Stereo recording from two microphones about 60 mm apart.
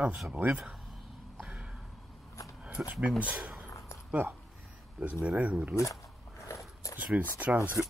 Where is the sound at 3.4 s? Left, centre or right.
Centre.